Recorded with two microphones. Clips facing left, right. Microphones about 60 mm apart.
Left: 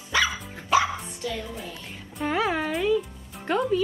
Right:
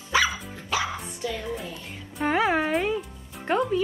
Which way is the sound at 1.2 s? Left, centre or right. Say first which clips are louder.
Right 1 dB; centre.